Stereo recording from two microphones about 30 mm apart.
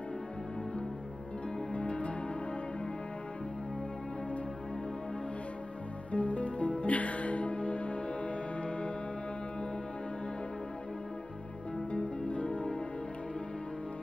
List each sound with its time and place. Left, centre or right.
1.7 s music: left
6.1 s music: left
11.9 s music: left